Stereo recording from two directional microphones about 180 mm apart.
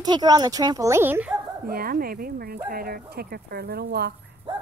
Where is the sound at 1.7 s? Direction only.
55° right (ahead or behind).